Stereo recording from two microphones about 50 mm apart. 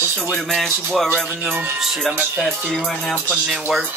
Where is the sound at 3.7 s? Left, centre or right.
Centre.